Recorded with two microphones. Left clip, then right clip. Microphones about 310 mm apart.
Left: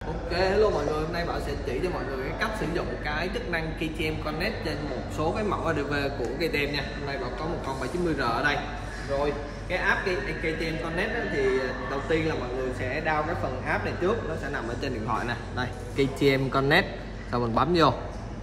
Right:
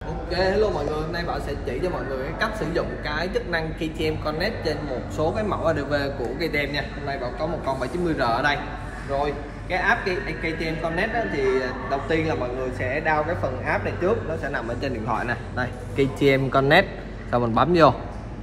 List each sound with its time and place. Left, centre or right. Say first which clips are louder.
0.3 s a woman's voice: right 2 dB; centre
2.4 s a woman's voice: right 5 dB; centre